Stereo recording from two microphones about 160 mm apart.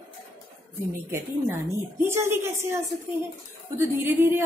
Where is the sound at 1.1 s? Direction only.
15° right (ahead or behind).